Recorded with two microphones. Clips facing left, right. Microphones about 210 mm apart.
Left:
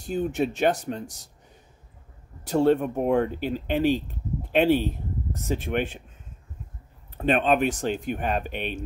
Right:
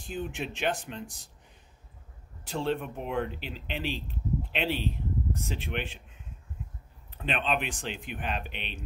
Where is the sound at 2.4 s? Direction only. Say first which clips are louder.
Left 10 dB; 45° left (ahead or behind).